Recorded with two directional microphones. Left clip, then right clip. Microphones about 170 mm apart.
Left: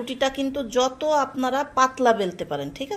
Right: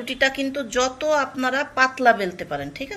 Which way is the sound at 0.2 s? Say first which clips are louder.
Right 3 dB; 45° left (ahead or behind).